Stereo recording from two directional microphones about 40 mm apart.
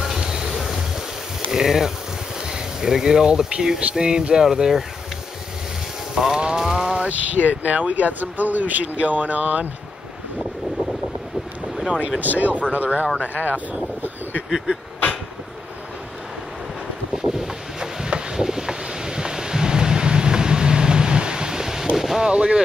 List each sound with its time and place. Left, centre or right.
0.2 s a sound: centre
1.5 s speech: centre
6.1 s music: centre
7.1 s speech: right
10.4 s wind: centre
11.9 s speech: right
12.2 s speech: right
17.1 s wind noise: centre
22.3 s speech: right